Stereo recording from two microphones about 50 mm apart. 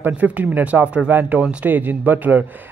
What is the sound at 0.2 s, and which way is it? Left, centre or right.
Speech, right.